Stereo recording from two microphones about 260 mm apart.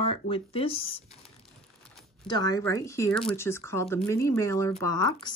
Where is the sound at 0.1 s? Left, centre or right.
Left.